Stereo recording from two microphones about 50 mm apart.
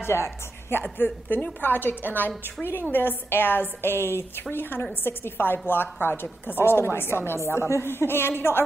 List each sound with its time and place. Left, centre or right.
0.0 s a woman's voice: left
0.9 s a woman's voice: left
6.6 s a woman's voice: left